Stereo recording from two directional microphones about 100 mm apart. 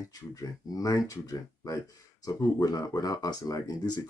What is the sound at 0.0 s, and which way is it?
Speech, 35° left (ahead or behind).